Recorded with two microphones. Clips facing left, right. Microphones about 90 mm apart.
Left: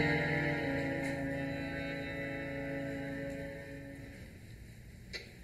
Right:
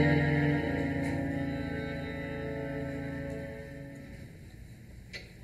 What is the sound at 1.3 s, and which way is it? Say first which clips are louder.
Music: right 4 dB; 40° right (ahead or behind).